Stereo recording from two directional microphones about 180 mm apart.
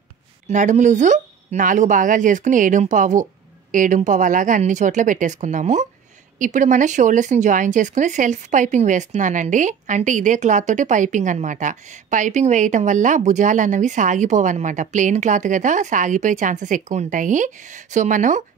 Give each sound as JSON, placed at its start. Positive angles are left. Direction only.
{"t": 0.5, "sound": "speech", "side_deg": -40}